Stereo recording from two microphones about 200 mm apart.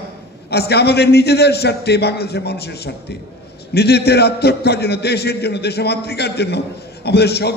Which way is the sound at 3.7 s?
55° left (ahead or behind).